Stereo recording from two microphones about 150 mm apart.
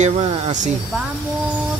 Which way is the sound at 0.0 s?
55° right (ahead or behind).